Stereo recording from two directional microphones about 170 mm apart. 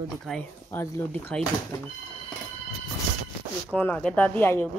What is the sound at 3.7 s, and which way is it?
Speech, 10° left (ahead or behind).